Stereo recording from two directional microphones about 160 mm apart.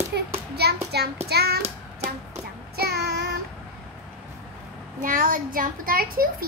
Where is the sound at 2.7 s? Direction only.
85° right.